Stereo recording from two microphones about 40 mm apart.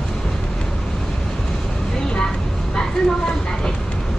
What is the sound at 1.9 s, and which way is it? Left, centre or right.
Vehicle, centre.